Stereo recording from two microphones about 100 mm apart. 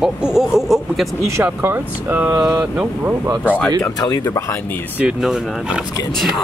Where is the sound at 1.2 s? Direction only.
25° right (ahead or behind).